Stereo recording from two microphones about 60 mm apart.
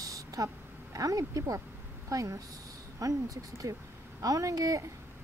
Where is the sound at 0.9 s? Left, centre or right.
Right.